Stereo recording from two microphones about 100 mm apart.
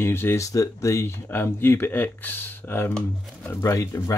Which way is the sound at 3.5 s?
30° left (ahead or behind).